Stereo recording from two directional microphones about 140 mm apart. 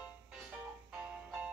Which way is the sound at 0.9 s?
10° right (ahead or behind).